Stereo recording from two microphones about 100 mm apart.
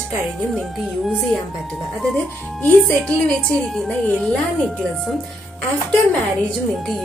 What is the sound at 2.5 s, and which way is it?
Speech, 15° left (ahead or behind).